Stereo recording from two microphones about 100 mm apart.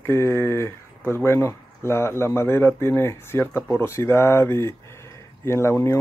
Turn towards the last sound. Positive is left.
turn(degrees=25)  # may be behind; listen again after turning